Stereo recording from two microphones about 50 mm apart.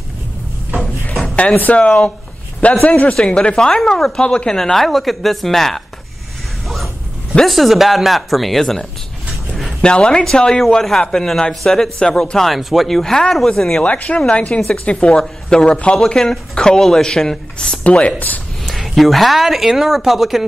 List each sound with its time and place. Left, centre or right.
1.2 s music: left
1.5 s speech: left
1.8 s speech: left
3.2 s a woman's voice: centre
7.4 s a woman's voice: centre
9.8 s speech: centre
12.4 s a woman's voice: centre
13.8 s speech: left
18.7 s a woman's voice: centre